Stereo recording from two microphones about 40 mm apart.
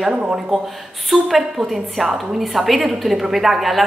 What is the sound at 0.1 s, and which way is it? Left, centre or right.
Speech, right.